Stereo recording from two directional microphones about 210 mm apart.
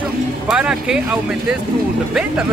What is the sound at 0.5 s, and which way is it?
Speech, 5° right (ahead or behind).